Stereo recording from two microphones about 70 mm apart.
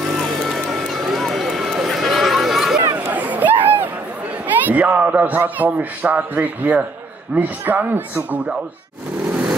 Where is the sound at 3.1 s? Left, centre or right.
Right.